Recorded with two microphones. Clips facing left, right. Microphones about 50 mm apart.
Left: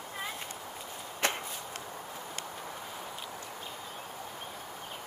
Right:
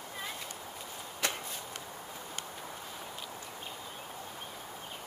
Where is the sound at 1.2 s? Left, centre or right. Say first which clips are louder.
Left 4 dB; left.